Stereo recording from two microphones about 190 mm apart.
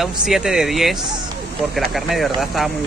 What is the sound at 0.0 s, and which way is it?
Speech, centre (ahead or behind).